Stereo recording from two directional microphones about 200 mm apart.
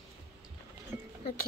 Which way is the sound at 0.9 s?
15° right (ahead or behind).